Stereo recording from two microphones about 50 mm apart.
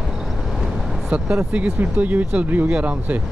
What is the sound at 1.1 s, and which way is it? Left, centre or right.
Speech, right.